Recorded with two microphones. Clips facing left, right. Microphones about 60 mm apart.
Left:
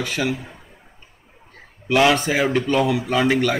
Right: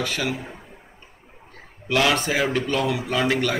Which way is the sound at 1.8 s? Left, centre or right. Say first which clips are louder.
Left 4 dB; centre.